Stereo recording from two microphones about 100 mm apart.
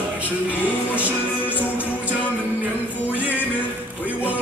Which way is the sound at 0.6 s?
15° right (ahead or behind).